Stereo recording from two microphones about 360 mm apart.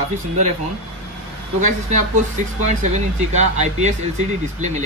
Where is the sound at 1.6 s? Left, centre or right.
Centre.